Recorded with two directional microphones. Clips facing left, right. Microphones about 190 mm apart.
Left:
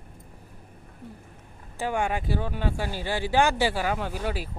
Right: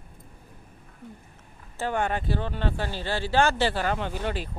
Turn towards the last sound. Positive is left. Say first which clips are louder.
# even
turn(degrees=5)  # may be behind; listen again after turning